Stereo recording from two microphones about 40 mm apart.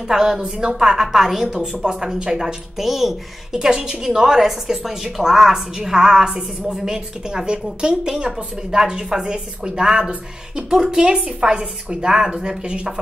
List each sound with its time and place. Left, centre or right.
0.1 s a woman's voice: centre
2.8 s a woman's voice: centre
3.5 s a woman's voice: centre